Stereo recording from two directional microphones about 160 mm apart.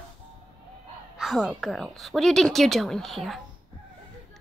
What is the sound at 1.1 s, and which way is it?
A child's voice, 5° right (ahead or behind).